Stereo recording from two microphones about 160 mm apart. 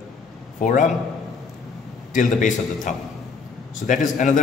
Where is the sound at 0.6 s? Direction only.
50° left (ahead or behind).